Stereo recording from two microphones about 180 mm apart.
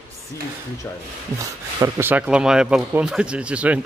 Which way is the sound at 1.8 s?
10° right (ahead or behind).